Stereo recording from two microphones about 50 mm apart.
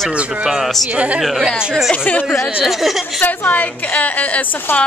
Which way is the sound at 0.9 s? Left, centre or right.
Right.